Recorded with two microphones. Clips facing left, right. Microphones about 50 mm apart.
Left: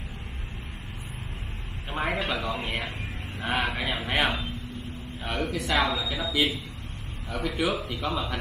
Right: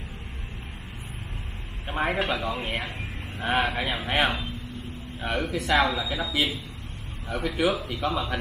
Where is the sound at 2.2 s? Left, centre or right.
Centre.